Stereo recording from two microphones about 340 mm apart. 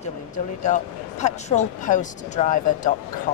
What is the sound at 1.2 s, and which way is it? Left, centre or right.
Speech, centre.